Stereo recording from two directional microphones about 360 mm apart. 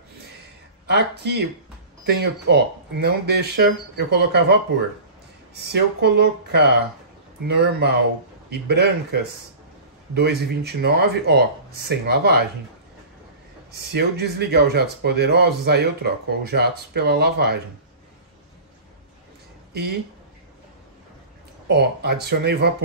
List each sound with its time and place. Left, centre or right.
0.8 s speech: right
5.6 s speech: right
13.7 s speech: right
21.6 s speech: right